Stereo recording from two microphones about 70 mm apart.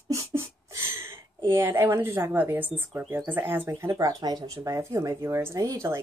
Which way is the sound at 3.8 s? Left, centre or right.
Right.